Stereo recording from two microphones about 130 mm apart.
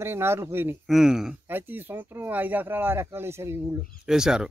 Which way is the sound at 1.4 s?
15° right (ahead or behind).